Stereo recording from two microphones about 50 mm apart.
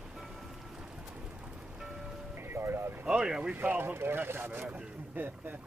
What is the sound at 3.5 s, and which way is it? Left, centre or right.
Speech, right.